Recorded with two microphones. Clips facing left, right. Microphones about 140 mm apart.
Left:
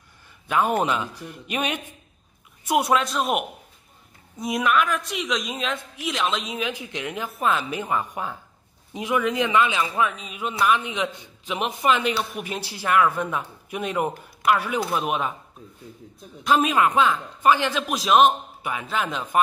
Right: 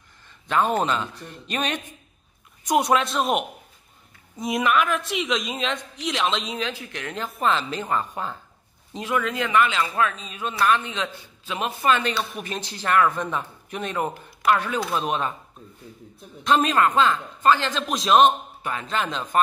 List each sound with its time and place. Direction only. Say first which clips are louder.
0.5 s a man's voice: even; 10° left (ahead or behind)
2.7 s a woman's voice: right 1 dB; centre (ahead or behind)
6.6 s a man's voice: left 2 dB; 15° left (ahead or behind)